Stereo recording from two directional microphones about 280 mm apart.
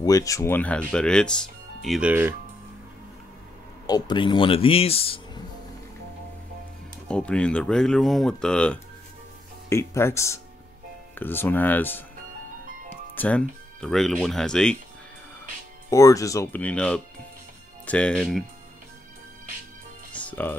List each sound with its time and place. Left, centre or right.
0.0 s speech: centre
3.8 s speech: centre
7.1 s speech: centre
13.1 s speech: centre
15.9 s speech: centre
20.2 s music: centre